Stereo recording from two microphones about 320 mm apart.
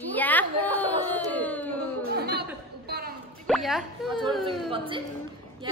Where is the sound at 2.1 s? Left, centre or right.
Right.